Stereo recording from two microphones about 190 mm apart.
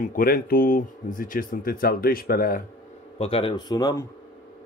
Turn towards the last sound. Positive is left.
turn(degrees=20)  # may be behind; listen again after turning